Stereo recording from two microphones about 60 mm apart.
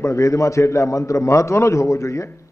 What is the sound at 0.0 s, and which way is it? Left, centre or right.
A man's voice, left.